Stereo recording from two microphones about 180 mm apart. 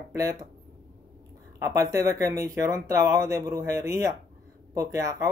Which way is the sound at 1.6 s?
15° right (ahead or behind).